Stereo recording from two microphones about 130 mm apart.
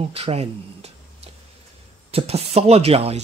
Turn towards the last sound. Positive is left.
turn(degrees=-50)  # may be behind; listen again after turning